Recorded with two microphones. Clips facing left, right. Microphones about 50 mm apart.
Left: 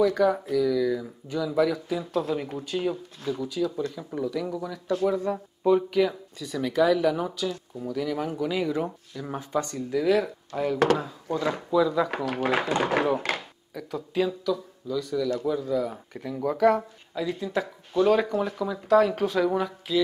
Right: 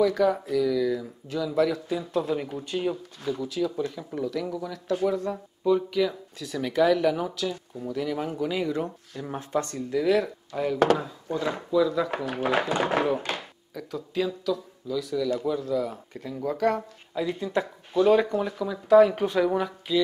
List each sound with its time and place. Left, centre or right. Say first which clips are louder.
0.0 s speech: even; centre
6.4 s speech: even; centre
12.7 s speech: left 1 dB; centre
17.1 s speech: right 1 dB; centre